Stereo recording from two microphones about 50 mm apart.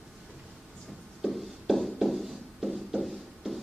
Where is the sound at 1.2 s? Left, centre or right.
Centre.